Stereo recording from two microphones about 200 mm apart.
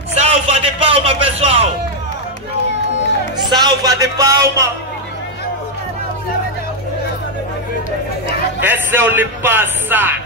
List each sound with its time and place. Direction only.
0.1 s a sound: 30° right (ahead or behind)
3.4 s speech: 20° right (ahead or behind)
8.5 s speech: 10° right (ahead or behind)